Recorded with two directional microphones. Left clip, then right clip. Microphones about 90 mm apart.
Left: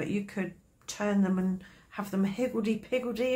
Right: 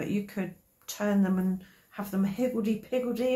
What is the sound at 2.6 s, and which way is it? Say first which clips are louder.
Speech: right 1 dB; 60° left (ahead or behind).